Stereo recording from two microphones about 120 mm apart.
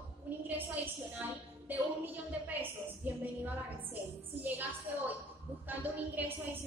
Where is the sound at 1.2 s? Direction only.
15° right (ahead or behind).